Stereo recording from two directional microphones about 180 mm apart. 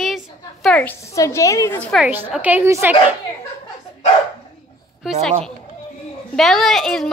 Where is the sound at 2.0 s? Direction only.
10° right (ahead or behind).